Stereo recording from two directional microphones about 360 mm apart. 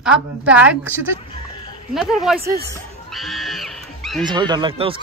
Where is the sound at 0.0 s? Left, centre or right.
Centre.